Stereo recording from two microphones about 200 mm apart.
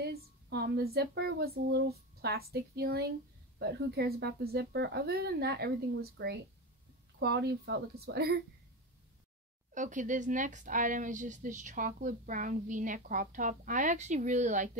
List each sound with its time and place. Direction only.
0.0 s speech: 55° right (ahead or behind)
9.8 s speech: 40° right (ahead or behind)